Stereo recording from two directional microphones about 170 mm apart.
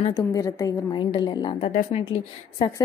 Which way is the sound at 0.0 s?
25° left (ahead or behind).